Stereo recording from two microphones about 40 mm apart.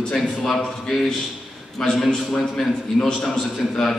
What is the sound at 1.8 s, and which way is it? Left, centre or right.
A man's voice, centre.